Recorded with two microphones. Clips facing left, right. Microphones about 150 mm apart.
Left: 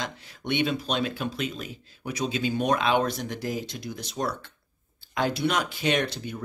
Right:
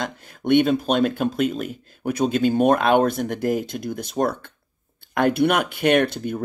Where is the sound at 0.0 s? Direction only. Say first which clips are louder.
Right 7 dB; 50° right (ahead or behind).